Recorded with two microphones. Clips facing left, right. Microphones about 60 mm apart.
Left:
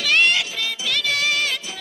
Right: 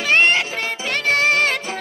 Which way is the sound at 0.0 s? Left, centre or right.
Right.